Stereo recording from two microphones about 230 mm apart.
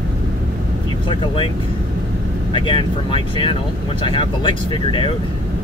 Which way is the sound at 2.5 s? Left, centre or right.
Left.